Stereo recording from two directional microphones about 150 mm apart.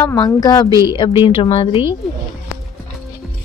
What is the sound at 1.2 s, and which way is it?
Speech, 35° left (ahead or behind).